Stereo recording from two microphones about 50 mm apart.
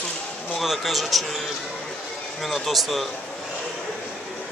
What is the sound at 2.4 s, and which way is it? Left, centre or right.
Speech, centre.